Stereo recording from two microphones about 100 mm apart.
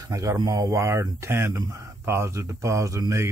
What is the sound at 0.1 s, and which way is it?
Speech, 30° right (ahead or behind).